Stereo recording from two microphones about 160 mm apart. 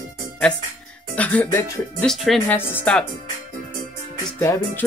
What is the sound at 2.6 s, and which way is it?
Music, 10° left (ahead or behind).